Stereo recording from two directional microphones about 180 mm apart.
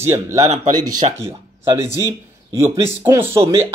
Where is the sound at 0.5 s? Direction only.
40° right (ahead or behind).